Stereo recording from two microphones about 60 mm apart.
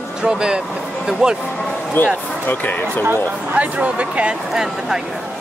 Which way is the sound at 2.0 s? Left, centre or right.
Left.